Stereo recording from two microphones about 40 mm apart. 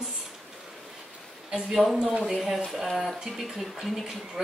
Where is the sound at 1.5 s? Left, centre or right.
Centre.